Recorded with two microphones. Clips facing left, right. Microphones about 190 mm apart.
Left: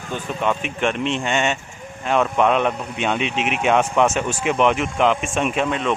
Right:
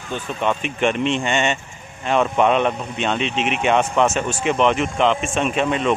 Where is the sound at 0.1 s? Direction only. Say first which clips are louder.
Even; 5° left (ahead or behind).